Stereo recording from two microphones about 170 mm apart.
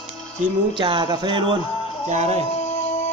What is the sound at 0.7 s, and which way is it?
Speech, 30° right (ahead or behind).